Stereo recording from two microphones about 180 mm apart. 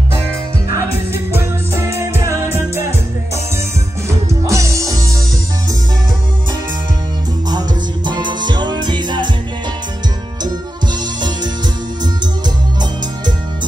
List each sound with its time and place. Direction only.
0.7 s music: 15° right (ahead or behind)
4.5 s music: 15° right (ahead or behind)
7.4 s music: 25° right (ahead or behind)